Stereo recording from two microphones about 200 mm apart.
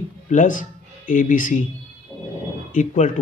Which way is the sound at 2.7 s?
40° left (ahead or behind).